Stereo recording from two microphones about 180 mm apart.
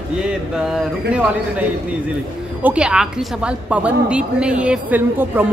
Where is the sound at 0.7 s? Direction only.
5° right (ahead or behind).